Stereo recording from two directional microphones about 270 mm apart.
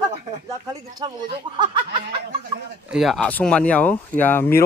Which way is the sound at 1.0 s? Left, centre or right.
Centre.